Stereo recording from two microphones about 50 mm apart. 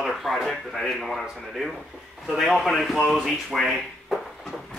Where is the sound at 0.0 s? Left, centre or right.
Centre.